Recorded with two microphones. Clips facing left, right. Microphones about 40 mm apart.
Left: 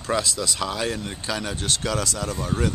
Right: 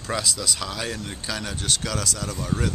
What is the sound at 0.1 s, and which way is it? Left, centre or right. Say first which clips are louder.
Speech: left 2 dB; centre.